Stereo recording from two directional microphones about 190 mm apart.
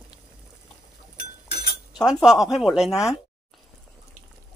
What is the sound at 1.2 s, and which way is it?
Chink, 60° left (ahead or behind).